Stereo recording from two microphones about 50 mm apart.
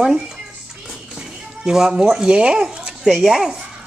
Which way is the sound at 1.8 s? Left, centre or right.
Centre.